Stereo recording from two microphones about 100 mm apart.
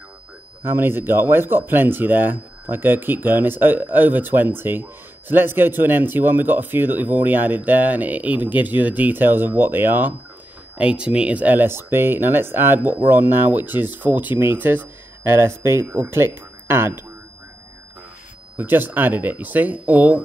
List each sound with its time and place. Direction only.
0.7 s speech: 25° right (ahead or behind)
18.6 s speech: 20° right (ahead or behind)